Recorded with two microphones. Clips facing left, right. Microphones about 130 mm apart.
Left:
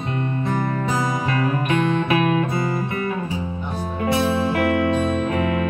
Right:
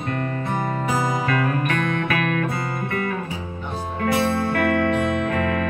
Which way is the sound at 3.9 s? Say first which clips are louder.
Left 1 dB; 20° left (ahead or behind).